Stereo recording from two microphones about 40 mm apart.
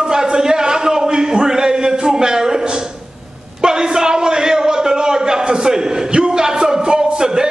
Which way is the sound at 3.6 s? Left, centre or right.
Centre.